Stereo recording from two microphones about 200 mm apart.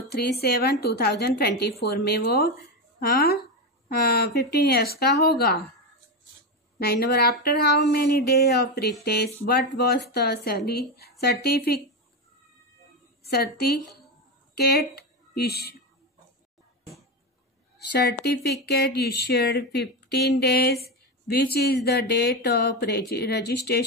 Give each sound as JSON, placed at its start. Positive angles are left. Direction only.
{"t": 0.1, "sound": "speech", "side_deg": 55}
{"t": 6.8, "sound": "speech", "side_deg": 50}
{"t": 13.2, "sound": "a woman's voice", "side_deg": 55}
{"t": 17.7, "sound": "speech", "side_deg": 55}